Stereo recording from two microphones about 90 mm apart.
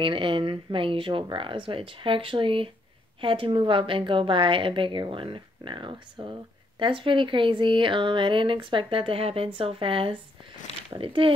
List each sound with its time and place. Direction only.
0.0 s speech: 70° right (ahead or behind)